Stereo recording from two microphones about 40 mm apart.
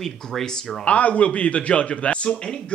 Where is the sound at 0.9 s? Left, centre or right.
Left.